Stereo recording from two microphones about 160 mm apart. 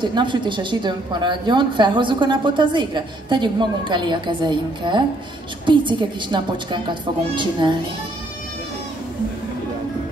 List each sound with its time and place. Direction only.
0.0 s a woman's voice: 30° right (ahead or behind)